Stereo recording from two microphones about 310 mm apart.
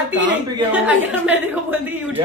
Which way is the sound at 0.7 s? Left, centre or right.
Centre.